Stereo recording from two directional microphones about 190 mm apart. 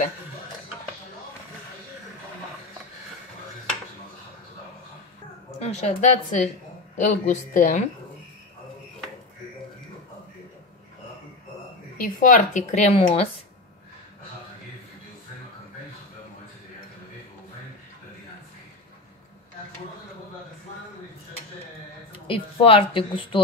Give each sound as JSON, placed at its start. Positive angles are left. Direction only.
{"t": 5.6, "sound": "a woman's voice", "side_deg": 35}
{"t": 12.0, "sound": "a woman's voice", "side_deg": 45}
{"t": 12.9, "sound": "speech", "side_deg": 30}
{"t": 22.1, "sound": "a woman's voice", "side_deg": 30}